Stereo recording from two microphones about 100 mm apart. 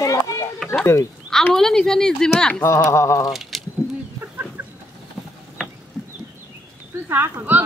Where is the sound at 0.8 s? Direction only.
30° left (ahead or behind).